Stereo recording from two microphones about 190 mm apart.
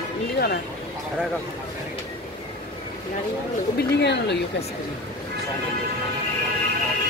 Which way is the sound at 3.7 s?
65° left (ahead or behind).